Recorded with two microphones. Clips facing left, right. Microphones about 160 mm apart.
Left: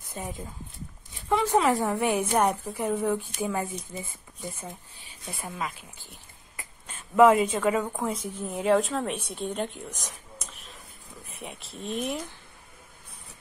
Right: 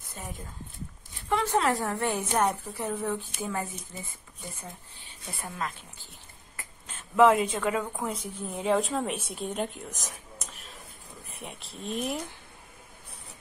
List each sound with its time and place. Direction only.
0.2 s a woman's voice: 10° left (ahead or behind)
1.5 s a woman's voice: 15° left (ahead or behind)
5.4 s a woman's voice: centre (ahead or behind)
7.2 s a woman's voice: centre (ahead or behind)